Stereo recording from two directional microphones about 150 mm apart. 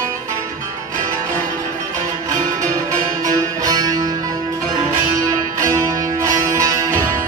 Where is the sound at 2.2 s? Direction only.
20° right (ahead or behind).